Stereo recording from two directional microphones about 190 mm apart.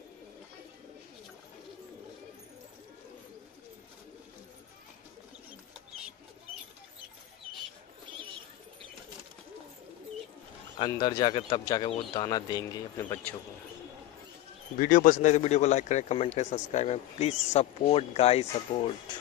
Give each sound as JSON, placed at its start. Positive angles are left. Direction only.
{"t": 10.8, "sound": "speech", "side_deg": 20}
{"t": 14.8, "sound": "speech", "side_deg": 45}